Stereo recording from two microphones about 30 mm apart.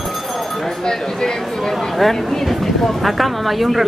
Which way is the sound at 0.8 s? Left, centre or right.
Centre.